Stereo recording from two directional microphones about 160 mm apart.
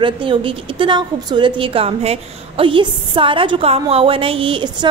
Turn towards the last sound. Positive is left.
turn(degrees=-30)  # may be behind; listen again after turning